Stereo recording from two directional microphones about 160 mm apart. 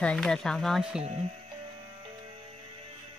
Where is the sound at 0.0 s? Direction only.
5° left (ahead or behind).